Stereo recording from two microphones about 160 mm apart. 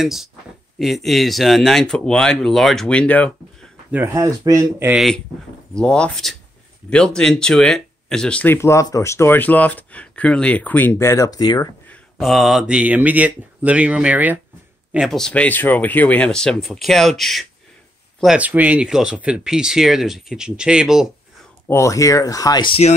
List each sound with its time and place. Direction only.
0.0 s speech: centre (ahead or behind)
3.9 s speech: 15° right (ahead or behind)
5.8 s speech: 5° left (ahead or behind); by 11.7 s 25° left (ahead or behind)
11.9 s speech: centre (ahead or behind)
21.6 s speech: 20° left (ahead or behind)